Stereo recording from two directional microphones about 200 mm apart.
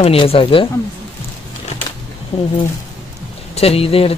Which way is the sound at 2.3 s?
30° left (ahead or behind).